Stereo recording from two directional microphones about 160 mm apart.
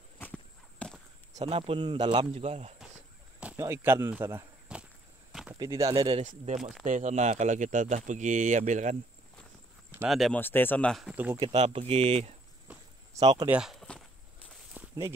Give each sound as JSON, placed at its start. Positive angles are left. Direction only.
{"t": 0.2, "sound": "a sound", "side_deg": 10}
{"t": 1.3, "sound": "speech", "side_deg": -40}
{"t": 3.3, "sound": "walk", "side_deg": -10}
{"t": 5.5, "sound": "speech", "side_deg": -20}
{"t": 6.2, "sound": "speech", "side_deg": -50}
{"t": 10.0, "sound": "speech", "side_deg": 0}
{"t": 10.4, "sound": "speech", "side_deg": 10}
{"t": 11.5, "sound": "speech", "side_deg": -40}
{"t": 12.7, "sound": "a sound", "side_deg": -5}
{"t": 13.1, "sound": "speech", "side_deg": -20}
{"t": 13.5, "sound": "a sound", "side_deg": -5}
{"t": 14.8, "sound": "walk", "side_deg": -10}